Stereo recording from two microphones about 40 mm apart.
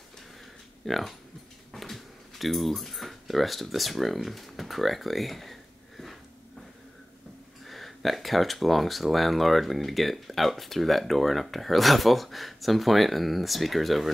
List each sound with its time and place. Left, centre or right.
0.8 s speech: centre
1.7 s keys jangling: centre
7.6 s speech: centre